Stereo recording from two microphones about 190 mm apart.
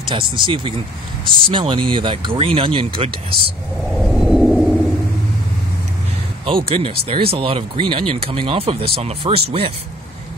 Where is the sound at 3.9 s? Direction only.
Centre (ahead or behind).